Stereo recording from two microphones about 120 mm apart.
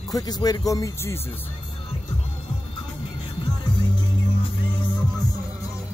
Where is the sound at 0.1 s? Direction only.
35° left (ahead or behind).